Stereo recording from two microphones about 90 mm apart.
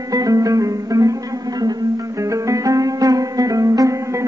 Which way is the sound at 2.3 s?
40° right (ahead or behind).